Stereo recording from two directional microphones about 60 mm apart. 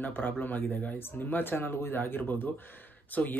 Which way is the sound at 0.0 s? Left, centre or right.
Left.